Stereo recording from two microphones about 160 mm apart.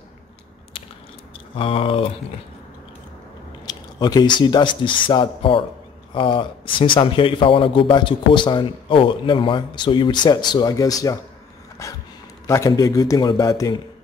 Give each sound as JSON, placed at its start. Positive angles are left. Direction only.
{"t": 0.7, "sound": "biting", "side_deg": 35}
{"t": 1.3, "sound": "speech", "side_deg": 35}
{"t": 3.6, "sound": "a man's voice", "side_deg": 25}
{"t": 11.8, "sound": "a sound", "side_deg": 20}
{"t": 12.4, "sound": "speech", "side_deg": 20}